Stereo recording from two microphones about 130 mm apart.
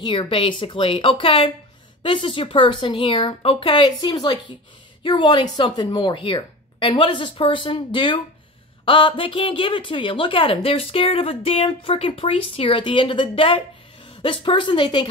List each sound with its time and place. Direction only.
0.0 s a woman's voice: 40° left (ahead or behind)